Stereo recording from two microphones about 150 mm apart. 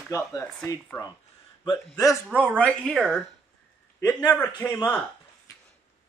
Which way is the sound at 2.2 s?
10° right (ahead or behind).